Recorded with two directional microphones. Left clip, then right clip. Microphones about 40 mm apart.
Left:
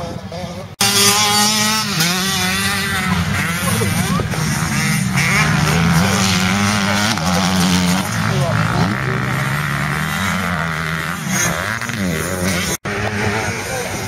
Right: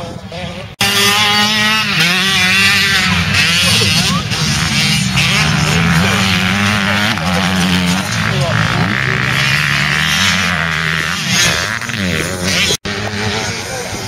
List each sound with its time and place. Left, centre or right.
0.7 s vehicle: left; by 3.1 s centre
3.3 s vehicle: right
5.6 s vehicle: left
9.5 s vehicle: centre
10.2 s a sound: right